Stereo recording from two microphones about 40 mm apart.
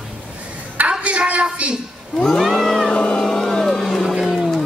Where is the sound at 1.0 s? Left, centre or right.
Right.